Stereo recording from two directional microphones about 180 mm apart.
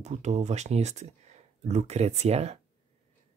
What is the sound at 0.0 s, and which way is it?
Speech, 40° right (ahead or behind).